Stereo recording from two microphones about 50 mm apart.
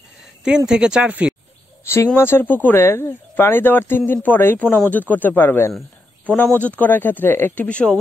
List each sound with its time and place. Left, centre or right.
0.4 s speech: centre
2.1 s speech: left
2.4 s speech: left
7.5 s speech: left